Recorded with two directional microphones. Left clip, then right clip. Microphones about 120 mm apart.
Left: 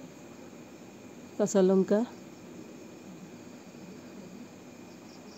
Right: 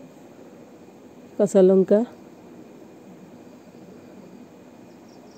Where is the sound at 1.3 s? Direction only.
15° right (ahead or behind).